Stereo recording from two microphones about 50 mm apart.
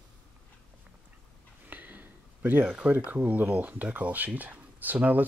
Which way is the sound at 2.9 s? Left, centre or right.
Right.